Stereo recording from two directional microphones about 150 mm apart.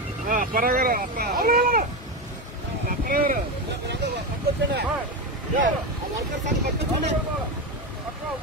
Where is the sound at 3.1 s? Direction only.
70° right (ahead or behind).